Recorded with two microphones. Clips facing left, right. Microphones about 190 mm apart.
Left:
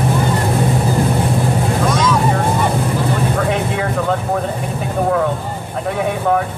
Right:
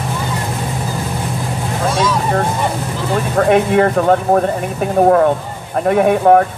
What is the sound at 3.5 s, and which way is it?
Speech, 55° right (ahead or behind).